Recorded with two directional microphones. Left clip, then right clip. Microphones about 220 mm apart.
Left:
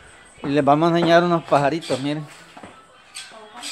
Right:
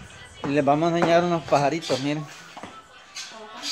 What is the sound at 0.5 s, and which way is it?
A man's voice, 15° left (ahead or behind).